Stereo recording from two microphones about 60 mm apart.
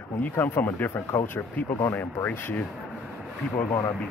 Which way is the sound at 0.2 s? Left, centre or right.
Left.